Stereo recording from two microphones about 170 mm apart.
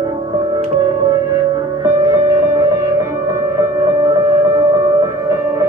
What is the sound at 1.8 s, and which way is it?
Music, 20° right (ahead or behind).